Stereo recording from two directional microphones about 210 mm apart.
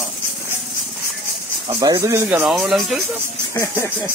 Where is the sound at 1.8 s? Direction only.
15° right (ahead or behind); by 3.0 s centre (ahead or behind).